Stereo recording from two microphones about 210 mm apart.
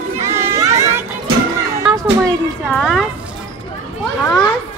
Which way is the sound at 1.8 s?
15° right (ahead or behind).